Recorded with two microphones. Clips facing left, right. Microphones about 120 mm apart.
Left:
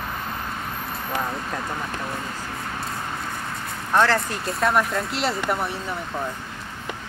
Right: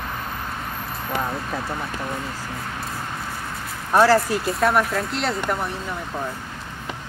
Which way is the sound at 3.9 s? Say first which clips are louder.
Right 4 dB; 10° right (ahead or behind).